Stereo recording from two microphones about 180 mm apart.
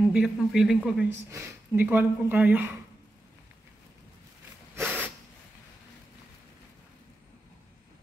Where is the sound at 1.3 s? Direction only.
15° right (ahead or behind).